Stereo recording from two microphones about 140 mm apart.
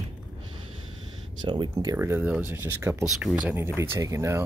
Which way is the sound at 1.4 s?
35° right (ahead or behind).